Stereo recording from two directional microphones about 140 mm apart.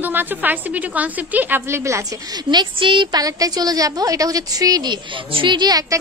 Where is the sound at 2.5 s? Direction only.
35° right (ahead or behind).